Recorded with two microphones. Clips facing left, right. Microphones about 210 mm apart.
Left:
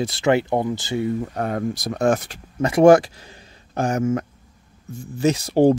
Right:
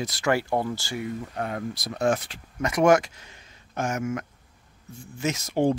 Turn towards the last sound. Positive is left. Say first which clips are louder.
# left 8 dB
turn(degrees=35)  # may be behind; listen again after turning